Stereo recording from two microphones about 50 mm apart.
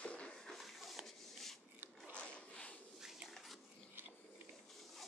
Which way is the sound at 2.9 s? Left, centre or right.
Centre.